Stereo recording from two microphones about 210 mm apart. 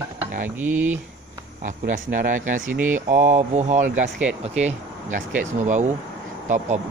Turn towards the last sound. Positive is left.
turn(degrees=-35)  # may be behind; listen again after turning